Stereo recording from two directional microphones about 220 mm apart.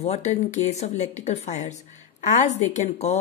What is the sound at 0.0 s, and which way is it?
Speech, 30° left (ahead or behind).